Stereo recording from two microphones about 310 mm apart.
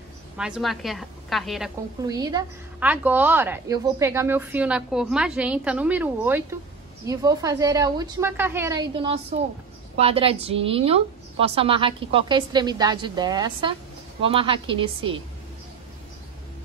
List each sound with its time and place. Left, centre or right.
0.4 s a woman's voice: centre
2.0 s a woman's voice: centre